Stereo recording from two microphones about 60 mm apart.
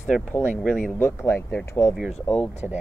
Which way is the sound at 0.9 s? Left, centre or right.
Left.